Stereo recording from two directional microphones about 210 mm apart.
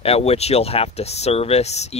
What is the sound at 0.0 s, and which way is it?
Speech, 30° left (ahead or behind).